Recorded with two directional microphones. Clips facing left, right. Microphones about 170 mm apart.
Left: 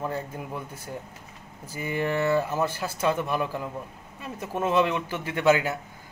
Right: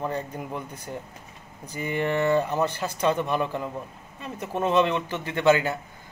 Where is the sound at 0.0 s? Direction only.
5° left (ahead or behind).